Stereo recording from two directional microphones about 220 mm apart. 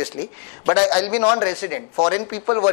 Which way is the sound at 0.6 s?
10° left (ahead or behind).